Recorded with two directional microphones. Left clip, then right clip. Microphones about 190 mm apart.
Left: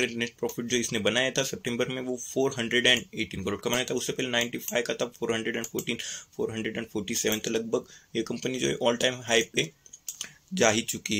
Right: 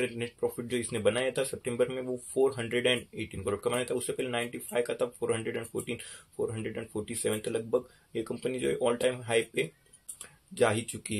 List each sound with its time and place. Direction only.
0.0 s speech: 25° left (ahead or behind)